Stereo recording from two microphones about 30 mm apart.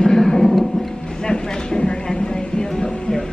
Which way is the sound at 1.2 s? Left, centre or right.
Left.